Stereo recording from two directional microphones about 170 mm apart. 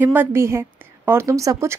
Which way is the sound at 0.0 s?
10° right (ahead or behind).